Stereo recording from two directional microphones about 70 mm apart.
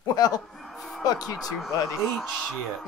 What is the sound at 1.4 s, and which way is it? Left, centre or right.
Speech, centre.